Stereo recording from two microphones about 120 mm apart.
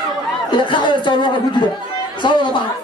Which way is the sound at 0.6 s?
40° left (ahead or behind).